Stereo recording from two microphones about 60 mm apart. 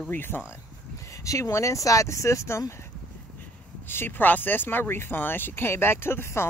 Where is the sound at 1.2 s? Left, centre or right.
Left.